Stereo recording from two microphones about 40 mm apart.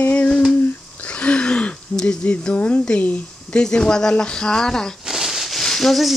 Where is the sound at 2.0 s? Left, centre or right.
Left.